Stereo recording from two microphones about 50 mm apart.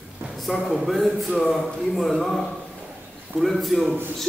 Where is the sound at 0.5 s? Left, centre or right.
Centre.